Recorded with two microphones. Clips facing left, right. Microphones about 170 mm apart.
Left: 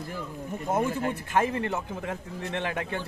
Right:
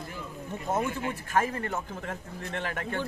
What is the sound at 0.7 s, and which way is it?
Speech, 10° left (ahead or behind).